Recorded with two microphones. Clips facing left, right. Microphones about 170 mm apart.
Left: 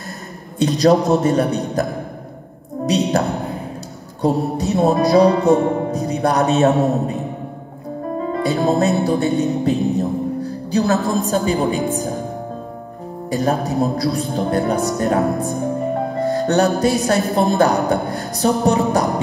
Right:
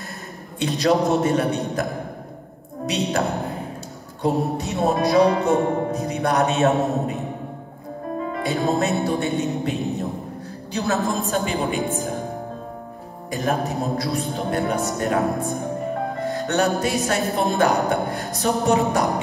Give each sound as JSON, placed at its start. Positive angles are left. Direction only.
{"t": 0.6, "sound": "speech", "side_deg": 40}
{"t": 2.9, "sound": "speech", "side_deg": 35}
{"t": 8.2, "sound": "music", "side_deg": 35}
{"t": 11.2, "sound": "speech", "side_deg": 35}
{"t": 13.3, "sound": "speech", "side_deg": 35}